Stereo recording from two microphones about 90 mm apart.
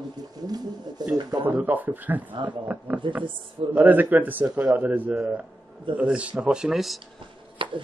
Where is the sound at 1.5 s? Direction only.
20° right (ahead or behind).